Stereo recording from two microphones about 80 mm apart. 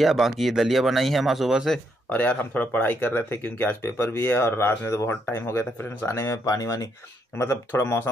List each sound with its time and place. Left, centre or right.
0.0 s speech: centre
2.0 s speech: centre; by 6.9 s left
7.3 s speech: left